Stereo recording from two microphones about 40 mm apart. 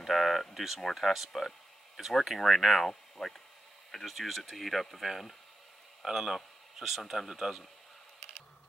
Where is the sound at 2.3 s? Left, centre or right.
Centre.